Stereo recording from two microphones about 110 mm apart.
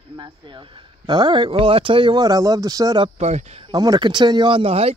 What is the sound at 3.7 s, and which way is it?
A man's voice, 35° right (ahead or behind).